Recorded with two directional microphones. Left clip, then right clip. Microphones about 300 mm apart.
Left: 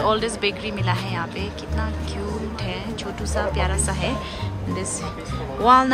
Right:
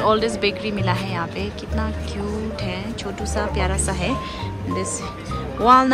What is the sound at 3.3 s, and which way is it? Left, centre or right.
Speech, centre.